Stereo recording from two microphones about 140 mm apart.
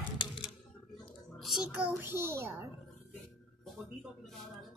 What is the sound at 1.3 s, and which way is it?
A child's voice, centre (ahead or behind).